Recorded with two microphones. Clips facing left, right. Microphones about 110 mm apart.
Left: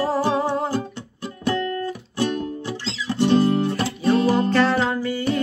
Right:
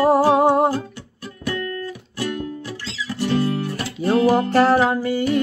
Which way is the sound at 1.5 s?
25° left (ahead or behind).